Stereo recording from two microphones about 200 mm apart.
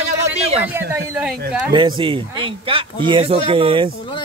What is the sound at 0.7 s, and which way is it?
Speech, 10° right (ahead or behind).